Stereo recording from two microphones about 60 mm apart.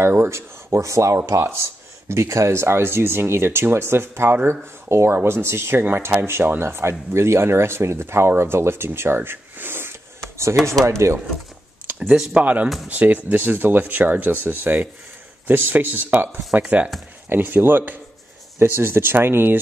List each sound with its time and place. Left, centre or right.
0.0 s speech: right
1.4 s speech: right
11.9 s a sound: right
12.4 s speech: right
16.6 s speech: centre
17.4 s speech: right